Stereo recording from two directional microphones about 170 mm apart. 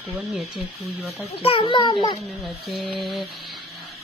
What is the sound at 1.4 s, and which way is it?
Speech, 30° left (ahead or behind).